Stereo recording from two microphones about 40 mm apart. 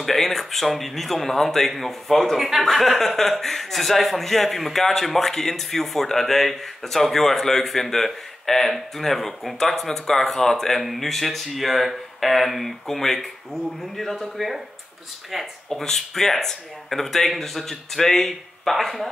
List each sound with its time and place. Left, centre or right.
0.0 s speech: centre
15.7 s speech: centre